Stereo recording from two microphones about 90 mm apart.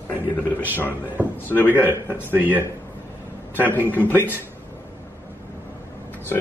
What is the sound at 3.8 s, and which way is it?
Speech, 20° right (ahead or behind).